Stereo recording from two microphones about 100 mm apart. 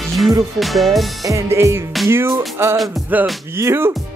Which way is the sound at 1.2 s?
30° right (ahead or behind).